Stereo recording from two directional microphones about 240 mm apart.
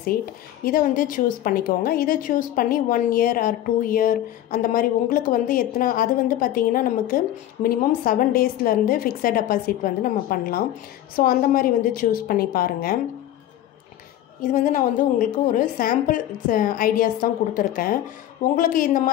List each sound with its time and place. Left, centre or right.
0.7 s a woman's voice: left
14.5 s a woman's voice: left